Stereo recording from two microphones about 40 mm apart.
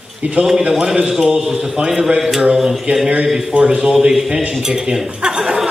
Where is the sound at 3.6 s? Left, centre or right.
Right.